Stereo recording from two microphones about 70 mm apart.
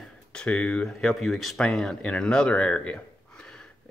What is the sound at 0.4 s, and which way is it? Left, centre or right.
Speech, centre.